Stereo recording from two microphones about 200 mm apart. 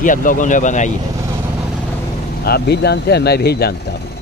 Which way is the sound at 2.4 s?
50° left (ahead or behind).